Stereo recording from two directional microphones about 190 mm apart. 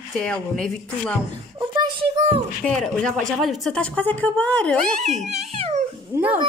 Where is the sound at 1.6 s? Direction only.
25° right (ahead or behind).